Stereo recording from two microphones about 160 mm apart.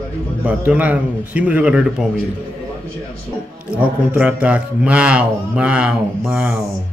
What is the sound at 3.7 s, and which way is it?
A man's voice, 10° right (ahead or behind).